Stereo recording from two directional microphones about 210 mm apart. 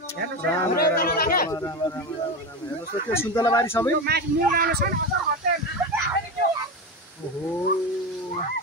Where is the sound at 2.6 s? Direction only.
15° left (ahead or behind).